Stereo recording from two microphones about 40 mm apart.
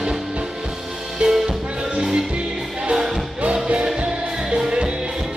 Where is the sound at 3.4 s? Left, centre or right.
Right.